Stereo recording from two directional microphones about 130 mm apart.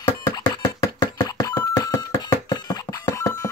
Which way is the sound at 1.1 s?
25° left (ahead or behind).